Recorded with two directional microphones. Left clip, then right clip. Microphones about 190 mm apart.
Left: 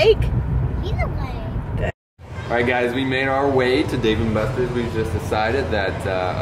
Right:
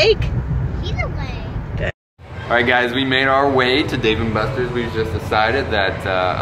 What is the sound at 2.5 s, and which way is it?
Speech, centre (ahead or behind).